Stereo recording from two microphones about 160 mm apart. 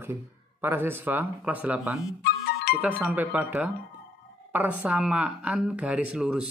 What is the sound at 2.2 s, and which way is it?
Music, 80° left.